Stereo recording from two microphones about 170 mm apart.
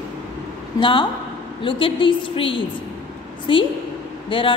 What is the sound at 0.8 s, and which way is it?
A woman's voice, 30° left (ahead or behind).